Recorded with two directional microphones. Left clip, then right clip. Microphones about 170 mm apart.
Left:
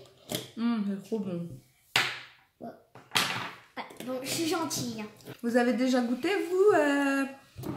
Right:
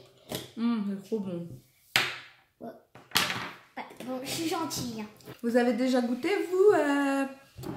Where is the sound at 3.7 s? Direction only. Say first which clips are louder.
Left 1 dB; 15° left (ahead or behind).